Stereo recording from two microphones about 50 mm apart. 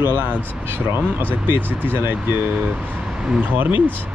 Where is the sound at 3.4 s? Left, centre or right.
Right.